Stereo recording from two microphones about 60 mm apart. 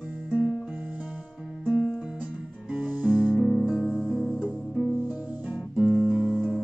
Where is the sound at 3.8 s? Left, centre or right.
Centre.